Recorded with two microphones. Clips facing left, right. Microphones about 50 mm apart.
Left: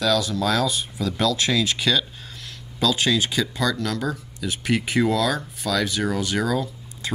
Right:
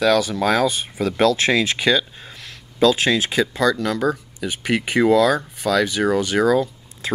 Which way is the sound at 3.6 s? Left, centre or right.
Centre.